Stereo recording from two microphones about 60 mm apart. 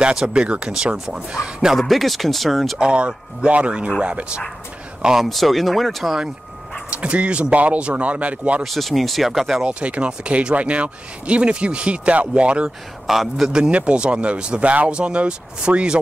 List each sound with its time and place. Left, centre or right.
0.0 s speech: centre
1.8 s speech: centre
2.8 s speech: centre
5.2 s speech: centre
6.9 s speech: centre
8.6 s speech: centre
9.7 s speech: right
12.6 s speech: centre
13.5 s speech: centre